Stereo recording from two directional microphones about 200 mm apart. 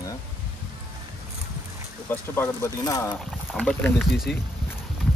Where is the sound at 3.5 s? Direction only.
5° left (ahead or behind).